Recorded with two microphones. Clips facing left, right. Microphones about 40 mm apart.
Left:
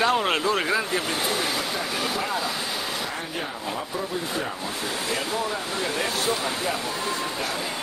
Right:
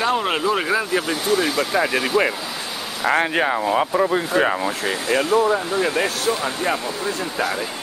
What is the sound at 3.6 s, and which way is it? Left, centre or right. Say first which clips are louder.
Speech: right 11 dB; right.